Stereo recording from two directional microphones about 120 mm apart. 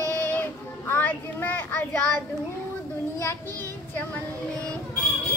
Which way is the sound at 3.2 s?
20° left (ahead or behind).